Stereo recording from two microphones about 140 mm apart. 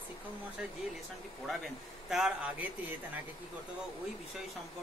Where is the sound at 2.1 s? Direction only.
5° right (ahead or behind).